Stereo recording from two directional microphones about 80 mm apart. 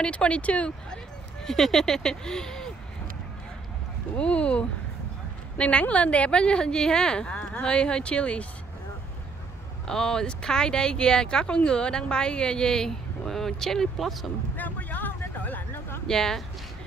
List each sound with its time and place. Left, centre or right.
0.0 s speech: centre
4.2 s speech: centre
9.8 s speech: centre
14.6 s vehicle: left
16.1 s speech: centre